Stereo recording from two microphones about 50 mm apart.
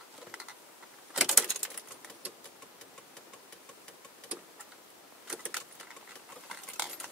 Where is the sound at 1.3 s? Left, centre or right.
Centre.